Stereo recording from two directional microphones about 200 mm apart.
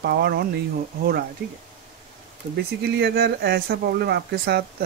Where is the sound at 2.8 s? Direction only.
50° right (ahead or behind).